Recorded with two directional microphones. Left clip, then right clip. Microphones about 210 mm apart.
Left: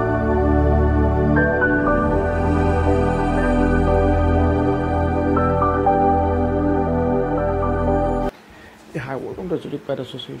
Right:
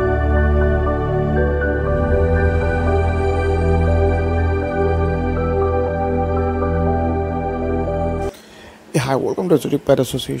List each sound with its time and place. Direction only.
9.1 s speech: 35° right (ahead or behind)